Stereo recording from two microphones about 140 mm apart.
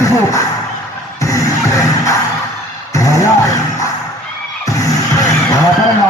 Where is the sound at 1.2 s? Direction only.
20° left (ahead or behind).